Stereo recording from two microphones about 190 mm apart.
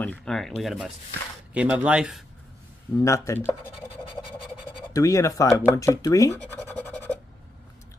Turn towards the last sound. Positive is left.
turn(degrees=10)  # may be behind; listen again after turning